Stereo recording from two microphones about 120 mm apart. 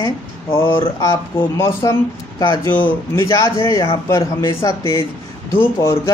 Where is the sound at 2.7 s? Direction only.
40° left (ahead or behind).